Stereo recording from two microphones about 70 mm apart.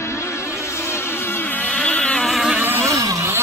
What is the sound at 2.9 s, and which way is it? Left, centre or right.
Vehicle, right.